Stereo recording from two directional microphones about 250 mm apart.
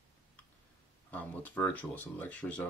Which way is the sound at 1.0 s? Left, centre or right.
Centre.